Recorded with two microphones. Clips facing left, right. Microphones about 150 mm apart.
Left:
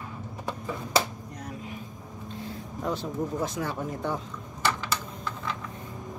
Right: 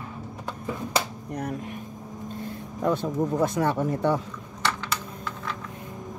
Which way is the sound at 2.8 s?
55° right (ahead or behind).